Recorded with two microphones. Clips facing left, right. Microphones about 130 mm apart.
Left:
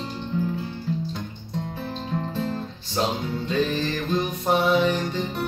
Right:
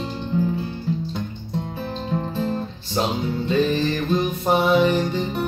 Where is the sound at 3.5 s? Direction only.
Centre (ahead or behind).